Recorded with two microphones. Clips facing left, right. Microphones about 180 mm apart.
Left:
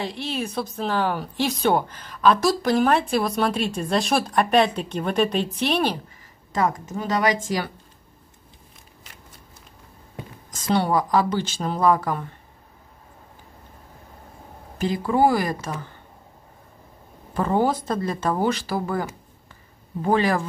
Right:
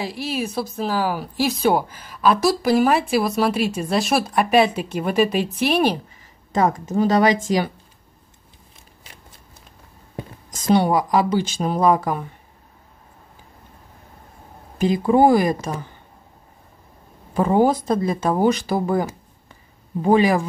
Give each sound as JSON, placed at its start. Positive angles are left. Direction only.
{"t": 0.0, "sound": "speech", "side_deg": -5}
{"t": 6.5, "sound": "speech", "side_deg": -30}
{"t": 10.7, "sound": "speech", "side_deg": -15}
{"t": 14.8, "sound": "speech", "side_deg": -20}
{"t": 17.3, "sound": "speech", "side_deg": -15}